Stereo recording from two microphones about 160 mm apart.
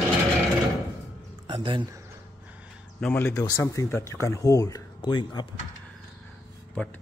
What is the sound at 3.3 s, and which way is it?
Speech, 20° left (ahead or behind).